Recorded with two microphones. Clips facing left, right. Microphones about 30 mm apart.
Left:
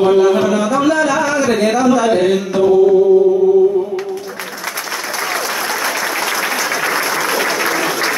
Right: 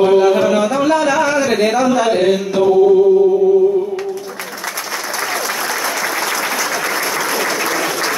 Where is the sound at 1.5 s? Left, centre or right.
Centre.